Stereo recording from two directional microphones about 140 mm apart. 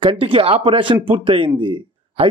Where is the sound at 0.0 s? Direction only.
40° right (ahead or behind).